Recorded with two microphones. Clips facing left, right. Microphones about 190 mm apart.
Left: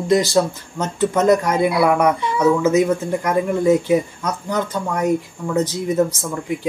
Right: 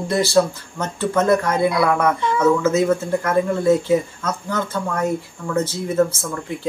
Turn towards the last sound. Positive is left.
turn(degrees=15)  # may be behind; listen again after turning